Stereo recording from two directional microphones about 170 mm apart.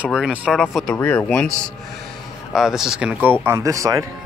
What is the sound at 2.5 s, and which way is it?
Speech, centre (ahead or behind).